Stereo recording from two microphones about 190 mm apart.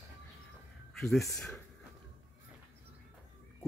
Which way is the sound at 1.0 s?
Centre (ahead or behind).